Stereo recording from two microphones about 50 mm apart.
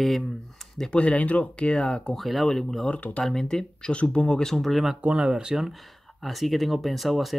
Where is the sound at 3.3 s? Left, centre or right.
Centre.